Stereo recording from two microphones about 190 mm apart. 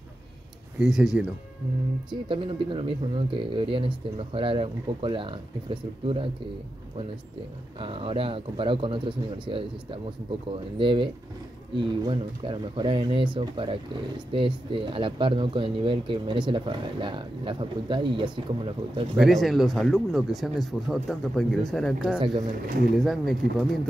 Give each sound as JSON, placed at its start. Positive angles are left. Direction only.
{"t": 0.7, "sound": "speech", "side_deg": -5}
{"t": 2.0, "sound": "speech", "side_deg": -25}
{"t": 7.8, "sound": "speech", "side_deg": -30}
{"t": 12.1, "sound": "speech", "side_deg": -25}
{"t": 19.1, "sound": "speech", "side_deg": 0}
{"t": 22.2, "sound": "speech", "side_deg": -25}
{"t": 22.9, "sound": "speech", "side_deg": 0}